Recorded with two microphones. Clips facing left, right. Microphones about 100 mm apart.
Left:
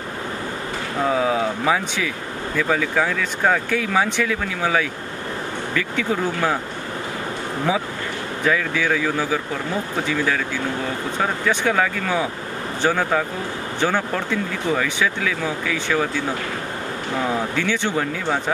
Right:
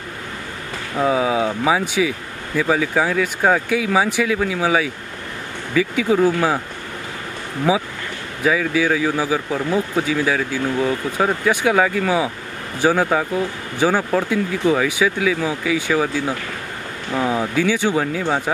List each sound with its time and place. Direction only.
1.0 s speech: 5° right (ahead or behind)
7.7 s speech: 5° right (ahead or behind)
17.3 s speech: 10° right (ahead or behind)